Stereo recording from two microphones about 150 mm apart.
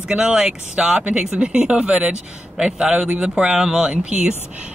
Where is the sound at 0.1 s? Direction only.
5° right (ahead or behind).